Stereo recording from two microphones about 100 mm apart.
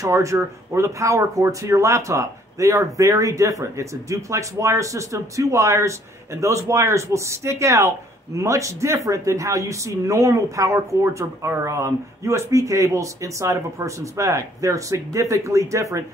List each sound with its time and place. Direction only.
0.0 s speech: 30° right (ahead or behind)